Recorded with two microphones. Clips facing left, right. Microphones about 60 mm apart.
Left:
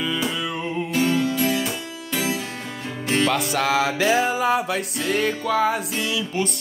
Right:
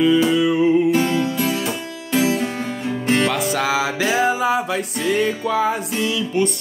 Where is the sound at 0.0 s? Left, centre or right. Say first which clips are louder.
Right 10 dB; centre.